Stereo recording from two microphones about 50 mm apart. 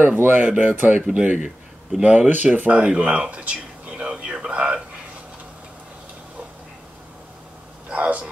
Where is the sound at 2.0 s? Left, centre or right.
Right.